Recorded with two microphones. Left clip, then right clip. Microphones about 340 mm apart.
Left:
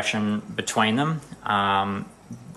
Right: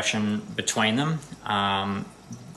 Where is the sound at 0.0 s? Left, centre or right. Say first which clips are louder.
Left 1 dB; centre.